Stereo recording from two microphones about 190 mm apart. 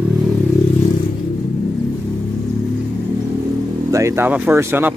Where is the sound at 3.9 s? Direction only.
15° right (ahead or behind).